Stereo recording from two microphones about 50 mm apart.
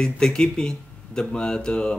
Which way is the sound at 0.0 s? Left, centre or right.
Centre.